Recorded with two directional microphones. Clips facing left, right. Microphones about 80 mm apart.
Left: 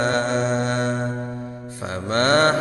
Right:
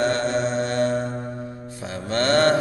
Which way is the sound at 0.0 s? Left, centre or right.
Left.